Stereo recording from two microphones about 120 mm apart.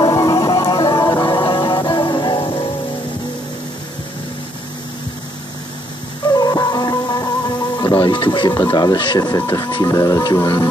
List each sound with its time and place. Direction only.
0.0 s music: 30° left (ahead or behind)
6.3 s music: 35° left (ahead or behind)
9.8 s music: 25° left (ahead or behind)